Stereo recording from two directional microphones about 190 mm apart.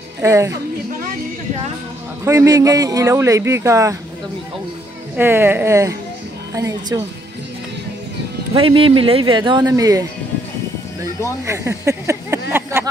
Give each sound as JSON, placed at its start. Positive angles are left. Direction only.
{"t": 0.2, "sound": "speech", "side_deg": -15}
{"t": 2.2, "sound": "speech", "side_deg": -15}
{"t": 5.1, "sound": "speech", "side_deg": -10}
{"t": 8.5, "sound": "speech", "side_deg": -30}
{"t": 11.2, "sound": "speech", "side_deg": -15}